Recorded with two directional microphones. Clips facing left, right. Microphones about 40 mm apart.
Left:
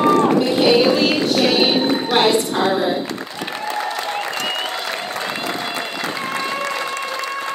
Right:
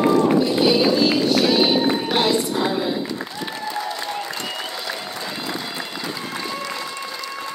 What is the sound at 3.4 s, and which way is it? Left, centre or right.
Applause, left.